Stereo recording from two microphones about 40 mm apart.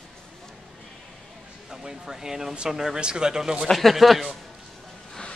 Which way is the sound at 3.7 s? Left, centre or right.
Centre.